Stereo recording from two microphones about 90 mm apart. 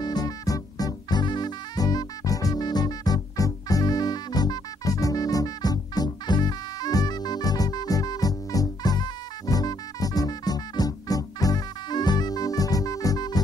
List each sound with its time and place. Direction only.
0.0 s music: 45° left (ahead or behind)